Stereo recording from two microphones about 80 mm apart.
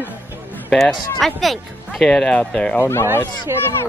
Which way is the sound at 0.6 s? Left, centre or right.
Centre.